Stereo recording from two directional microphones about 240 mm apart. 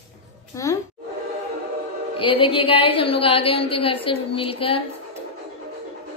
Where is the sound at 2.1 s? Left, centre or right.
Left.